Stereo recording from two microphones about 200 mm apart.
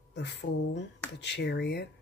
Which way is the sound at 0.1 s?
60° left (ahead or behind).